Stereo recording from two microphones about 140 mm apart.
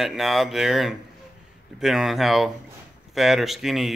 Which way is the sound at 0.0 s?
Centre (ahead or behind).